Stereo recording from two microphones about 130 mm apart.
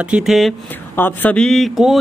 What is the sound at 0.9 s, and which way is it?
Speech, 15° left (ahead or behind).